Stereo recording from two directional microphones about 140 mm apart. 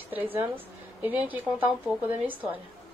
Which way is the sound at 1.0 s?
10° right (ahead or behind).